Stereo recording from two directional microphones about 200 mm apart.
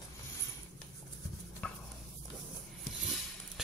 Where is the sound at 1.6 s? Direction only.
5° left (ahead or behind).